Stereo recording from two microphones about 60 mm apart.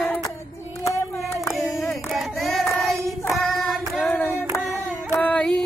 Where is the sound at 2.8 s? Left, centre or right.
Centre.